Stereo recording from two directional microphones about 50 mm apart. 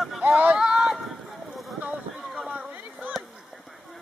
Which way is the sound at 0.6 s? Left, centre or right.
Centre.